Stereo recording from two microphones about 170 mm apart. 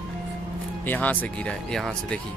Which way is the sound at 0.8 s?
10° left (ahead or behind).